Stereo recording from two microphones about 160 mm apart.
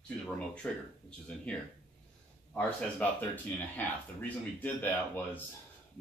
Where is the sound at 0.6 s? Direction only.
5° left (ahead or behind).